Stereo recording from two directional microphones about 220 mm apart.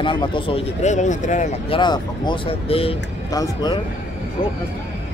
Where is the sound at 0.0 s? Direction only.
20° left (ahead or behind).